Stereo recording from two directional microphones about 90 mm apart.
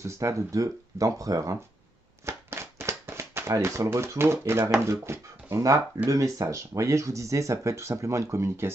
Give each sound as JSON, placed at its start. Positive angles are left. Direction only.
{"t": 0.0, "sound": "speech", "side_deg": -35}
{"t": 2.2, "sound": "a sound", "side_deg": -30}
{"t": 4.7, "sound": "speech", "side_deg": -30}